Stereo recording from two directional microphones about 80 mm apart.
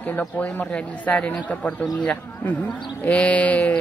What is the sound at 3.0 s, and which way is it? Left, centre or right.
Speech, centre.